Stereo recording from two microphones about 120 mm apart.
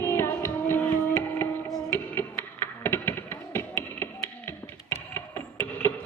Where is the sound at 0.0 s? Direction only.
20° left (ahead or behind).